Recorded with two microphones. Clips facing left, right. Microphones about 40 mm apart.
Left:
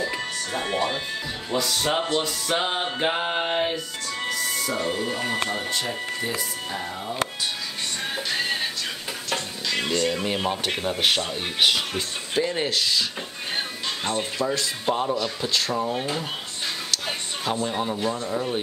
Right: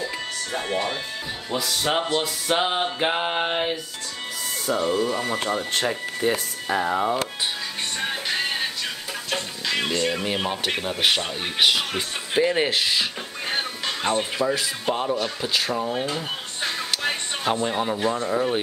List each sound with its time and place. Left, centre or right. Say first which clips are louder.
0.0 s music: left 1 dB; centre
1.5 s speech: left 1 dB; centre
2.0 s music: right 1 dB; centre
5.5 s speech: right 3 dB; right
6.7 s speech: right 9 dB; right
9.3 s speech: right 1 dB; centre
11.9 s speech: right 2 dB; right
14.0 s speech: right 4 dB; right
14.4 s music: right 1 dB; centre
16.0 s speech: right 1 dB; centre
17.0 s a sound: right 4 dB; right
17.9 s speech: right 3 dB; right